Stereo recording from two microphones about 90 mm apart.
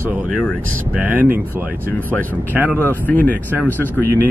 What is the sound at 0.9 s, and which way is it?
Speech, 20° right (ahead or behind).